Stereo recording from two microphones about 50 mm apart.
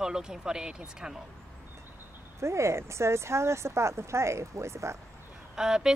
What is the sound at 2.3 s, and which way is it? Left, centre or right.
Speech, right.